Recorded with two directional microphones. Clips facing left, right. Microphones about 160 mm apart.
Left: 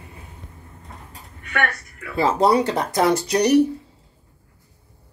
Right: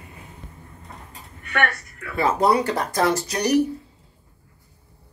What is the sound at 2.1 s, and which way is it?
Speech, 30° left (ahead or behind).